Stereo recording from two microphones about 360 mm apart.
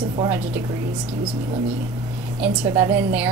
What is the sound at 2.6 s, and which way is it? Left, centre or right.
Speech, centre.